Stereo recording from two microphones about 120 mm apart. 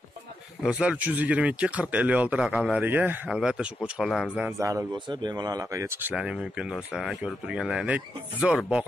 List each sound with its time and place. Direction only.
0.6 s speech: 5° right (ahead or behind)
3.3 s speech: 5° right (ahead or behind)
4.5 s a man's voice: 25° right (ahead or behind)
4.9 s speech: 40° right (ahead or behind)
6.1 s speech: 10° right (ahead or behind)